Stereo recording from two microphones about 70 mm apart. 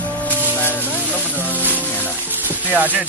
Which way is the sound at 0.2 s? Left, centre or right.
Left.